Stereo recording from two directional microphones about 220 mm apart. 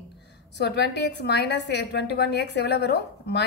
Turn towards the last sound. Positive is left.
turn(degrees=50)  # may be behind; listen again after turning